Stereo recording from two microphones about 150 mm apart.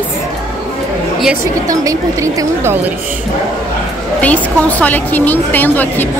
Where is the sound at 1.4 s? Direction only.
25° right (ahead or behind).